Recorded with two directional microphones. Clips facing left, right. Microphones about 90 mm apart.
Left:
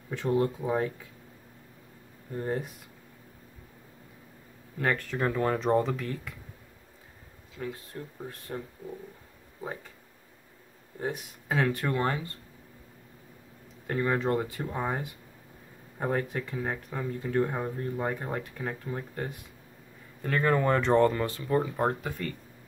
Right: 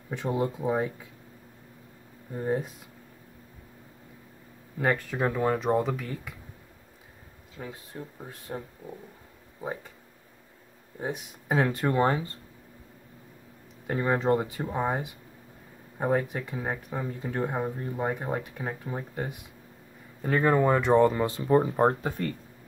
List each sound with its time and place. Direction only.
0.1 s speech: 15° right (ahead or behind)
2.3 s speech: 10° right (ahead or behind)
4.7 s speech: 15° right (ahead or behind)
7.5 s speech: 10° right (ahead or behind)
11.0 s speech: 20° right (ahead or behind)
13.8 s speech: 20° right (ahead or behind)